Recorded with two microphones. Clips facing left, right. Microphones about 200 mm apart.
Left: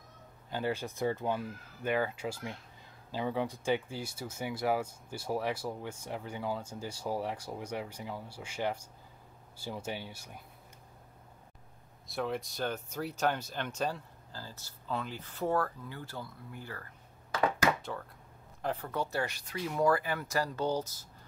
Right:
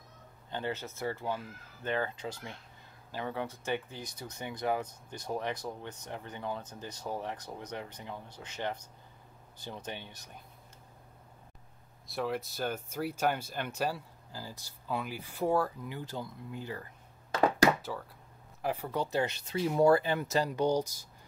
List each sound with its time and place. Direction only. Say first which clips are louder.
0.5 s speech: left 2 dB; 10° left (ahead or behind)
12.1 s speech: right 1 dB; centre (ahead or behind); by 16.8 s 15° right (ahead or behind)
18.6 s speech: right 1 dB; 10° right (ahead or behind)